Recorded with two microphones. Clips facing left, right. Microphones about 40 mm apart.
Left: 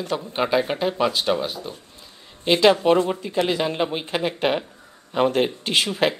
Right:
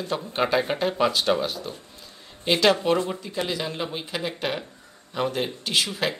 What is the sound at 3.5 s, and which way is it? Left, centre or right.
Speech, left.